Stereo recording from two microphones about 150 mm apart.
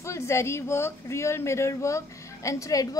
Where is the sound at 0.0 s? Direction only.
20° left (ahead or behind).